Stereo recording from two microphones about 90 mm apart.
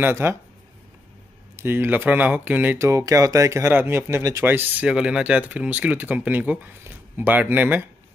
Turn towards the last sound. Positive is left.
turn(degrees=-20)  # may be behind; listen again after turning